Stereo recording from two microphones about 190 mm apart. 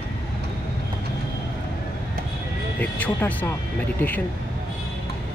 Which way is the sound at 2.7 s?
10° left (ahead or behind).